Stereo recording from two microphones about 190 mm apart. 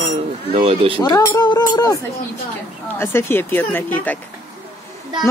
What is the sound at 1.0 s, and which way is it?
Speech, 15° left (ahead or behind).